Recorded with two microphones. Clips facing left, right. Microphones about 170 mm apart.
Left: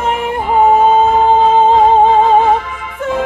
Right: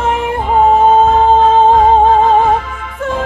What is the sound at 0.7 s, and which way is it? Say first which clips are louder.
Music: right 1 dB; 10° left (ahead or behind).